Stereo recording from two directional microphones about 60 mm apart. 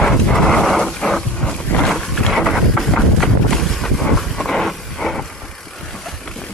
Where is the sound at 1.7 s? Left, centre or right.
Centre.